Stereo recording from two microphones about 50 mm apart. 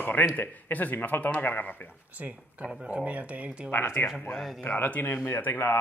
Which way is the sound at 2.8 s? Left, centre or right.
Right.